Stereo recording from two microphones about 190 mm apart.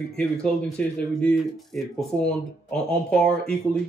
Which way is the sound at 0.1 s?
5° left (ahead or behind).